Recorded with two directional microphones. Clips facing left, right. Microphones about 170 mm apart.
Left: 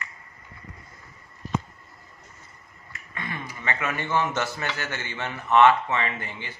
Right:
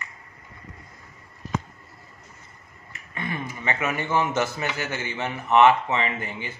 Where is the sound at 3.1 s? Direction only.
20° right (ahead or behind).